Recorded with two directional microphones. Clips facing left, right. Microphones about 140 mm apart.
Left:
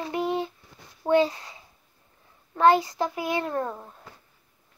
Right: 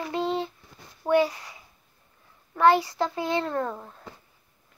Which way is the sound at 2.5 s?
20° left (ahead or behind).